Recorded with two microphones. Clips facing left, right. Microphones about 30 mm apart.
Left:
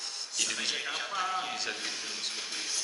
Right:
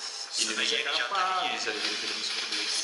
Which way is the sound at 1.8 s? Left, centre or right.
Right.